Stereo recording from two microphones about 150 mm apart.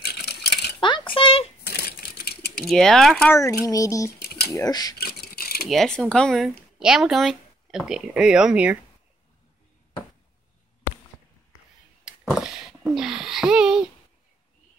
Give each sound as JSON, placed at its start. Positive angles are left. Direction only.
{"t": 0.0, "sound": "coin", "side_deg": 90}
{"t": 0.7, "sound": "coin", "side_deg": 30}
{"t": 1.1, "sound": "a sound", "side_deg": 40}
{"t": 1.6, "sound": "typewriter", "side_deg": 90}
{"t": 2.6, "sound": "speech", "side_deg": 5}
{"t": 3.3, "sound": "speech", "side_deg": 20}
{"t": 4.2, "sound": "typing", "side_deg": 90}
{"t": 4.5, "sound": "speech", "side_deg": 25}
{"t": 4.9, "sound": "a sound", "side_deg": 90}
{"t": 5.7, "sound": "speech", "side_deg": 5}
{"t": 12.0, "sound": "a sound", "side_deg": -5}